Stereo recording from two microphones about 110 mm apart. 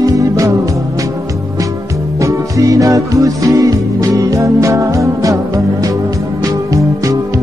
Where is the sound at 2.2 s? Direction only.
30° right (ahead or behind).